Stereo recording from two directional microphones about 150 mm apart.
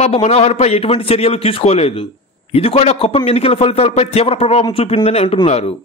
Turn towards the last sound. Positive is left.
turn(degrees=40)  # may be behind; listen again after turning